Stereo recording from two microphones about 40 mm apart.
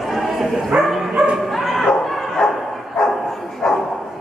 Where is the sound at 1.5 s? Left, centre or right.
Centre.